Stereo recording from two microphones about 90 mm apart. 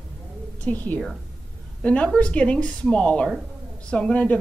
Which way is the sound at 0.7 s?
20° left (ahead or behind).